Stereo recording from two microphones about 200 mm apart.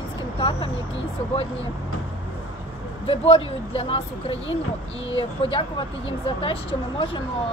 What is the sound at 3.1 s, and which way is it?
Speech, 25° left (ahead or behind).